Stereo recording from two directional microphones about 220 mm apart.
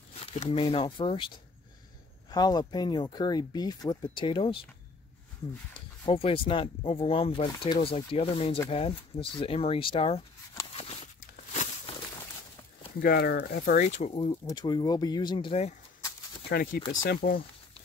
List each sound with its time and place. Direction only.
0.2 s speech: 25° left (ahead or behind)
2.3 s speech: 20° left (ahead or behind)
6.0 s speech: 25° left (ahead or behind)
11.1 s a sound: 35° left (ahead or behind)
13.0 s speech: 45° left (ahead or behind)
13.8 s speech: 30° left (ahead or behind)
16.4 s speech: 45° left (ahead or behind)